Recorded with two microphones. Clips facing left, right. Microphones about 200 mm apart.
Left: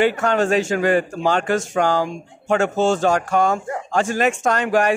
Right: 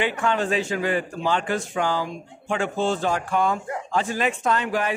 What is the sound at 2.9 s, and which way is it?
Speech, 80° left.